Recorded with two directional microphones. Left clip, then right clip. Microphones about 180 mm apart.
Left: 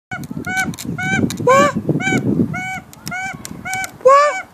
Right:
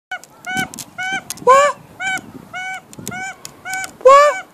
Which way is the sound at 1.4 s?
Centre (ahead or behind).